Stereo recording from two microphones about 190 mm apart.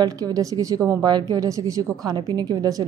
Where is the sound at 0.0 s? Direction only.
20° right (ahead or behind).